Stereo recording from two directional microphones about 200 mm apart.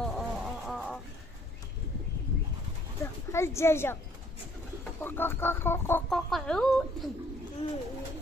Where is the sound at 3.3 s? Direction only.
15° left (ahead or behind).